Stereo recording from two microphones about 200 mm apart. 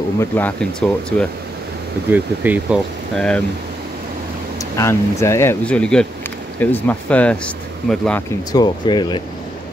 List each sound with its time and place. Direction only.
0.2 s speech: 10° left (ahead or behind)
2.0 s speech: 10° right (ahead or behind)
3.2 s speech: 5° left (ahead or behind)
4.6 s speech: 15° left (ahead or behind)
8.5 s speech: 20° left (ahead or behind)